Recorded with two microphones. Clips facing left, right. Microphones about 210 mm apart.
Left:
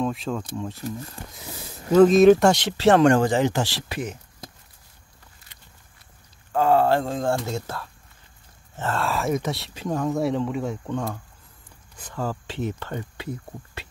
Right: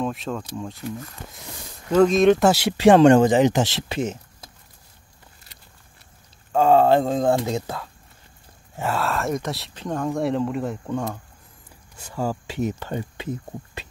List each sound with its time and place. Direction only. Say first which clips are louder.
0.0 s speech: left 1 dB; centre (ahead or behind)
1.9 s speech: left 2 dB; 5° left (ahead or behind); by 4.2 s 25° right (ahead or behind)
6.5 s speech: right 3 dB; 20° right (ahead or behind)